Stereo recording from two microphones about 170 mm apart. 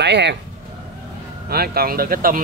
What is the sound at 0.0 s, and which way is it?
Speech, 90° right.